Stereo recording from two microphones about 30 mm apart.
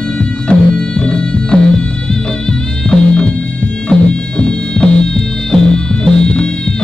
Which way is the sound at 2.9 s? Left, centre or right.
Left.